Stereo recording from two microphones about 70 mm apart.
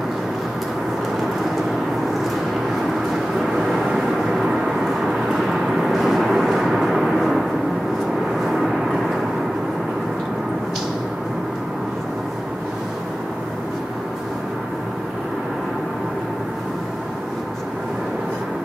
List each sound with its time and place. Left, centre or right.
3.3 s vehicle: centre